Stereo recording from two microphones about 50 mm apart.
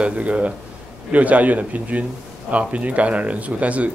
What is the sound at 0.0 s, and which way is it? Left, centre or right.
A man's voice, right.